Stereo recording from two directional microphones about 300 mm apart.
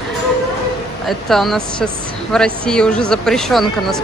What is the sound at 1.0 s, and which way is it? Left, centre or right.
Speech, centre.